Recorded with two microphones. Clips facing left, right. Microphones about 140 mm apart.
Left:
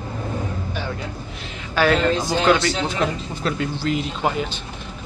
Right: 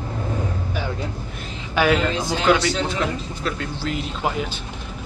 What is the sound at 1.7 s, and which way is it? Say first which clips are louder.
Speech: left 1 dB; 10° right (ahead or behind).